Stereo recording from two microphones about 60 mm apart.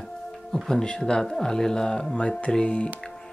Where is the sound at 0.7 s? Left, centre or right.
Centre.